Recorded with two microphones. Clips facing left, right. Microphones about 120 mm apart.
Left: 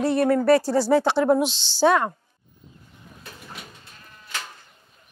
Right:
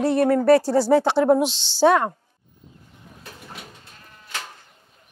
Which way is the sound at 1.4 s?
65° right (ahead or behind).